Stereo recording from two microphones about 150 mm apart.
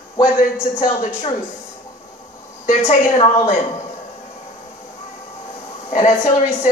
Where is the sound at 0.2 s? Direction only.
55° left (ahead or behind).